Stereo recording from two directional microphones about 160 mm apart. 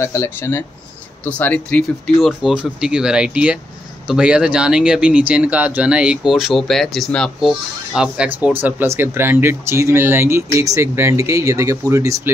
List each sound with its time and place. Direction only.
0.0 s speech: 15° left (ahead or behind)
2.2 s speech: 5° right (ahead or behind); by 12.2 s 20° right (ahead or behind)